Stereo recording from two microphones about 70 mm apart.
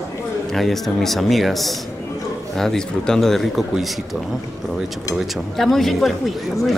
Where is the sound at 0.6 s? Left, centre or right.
Centre.